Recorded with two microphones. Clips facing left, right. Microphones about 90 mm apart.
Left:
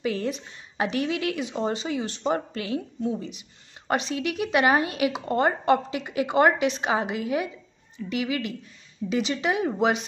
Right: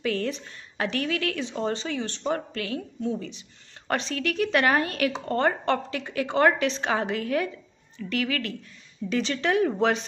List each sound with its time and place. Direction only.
0.0 s speech: 15° left (ahead or behind)